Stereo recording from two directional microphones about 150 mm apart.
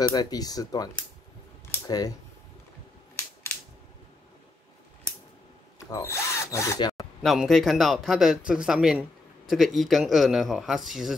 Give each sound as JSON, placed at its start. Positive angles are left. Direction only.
{"t": 0.0, "sound": "speech", "side_deg": 25}
{"t": 1.9, "sound": "speech", "side_deg": 25}
{"t": 5.9, "sound": "speech", "side_deg": 20}
{"t": 7.2, "sound": "speech", "side_deg": 0}